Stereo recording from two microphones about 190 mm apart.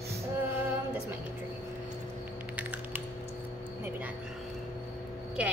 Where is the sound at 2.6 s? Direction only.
10° right (ahead or behind).